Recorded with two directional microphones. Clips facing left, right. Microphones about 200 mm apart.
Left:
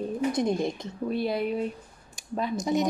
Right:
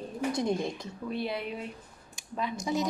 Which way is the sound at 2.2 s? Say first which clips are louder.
Left 4 dB; 40° left (ahead or behind).